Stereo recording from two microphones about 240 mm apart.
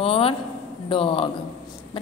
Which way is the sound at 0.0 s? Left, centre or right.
Left.